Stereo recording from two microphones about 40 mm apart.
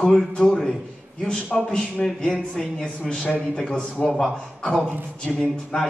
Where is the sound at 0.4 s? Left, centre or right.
Centre.